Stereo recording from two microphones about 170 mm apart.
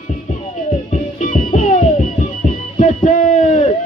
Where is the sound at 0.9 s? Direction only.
45° left (ahead or behind).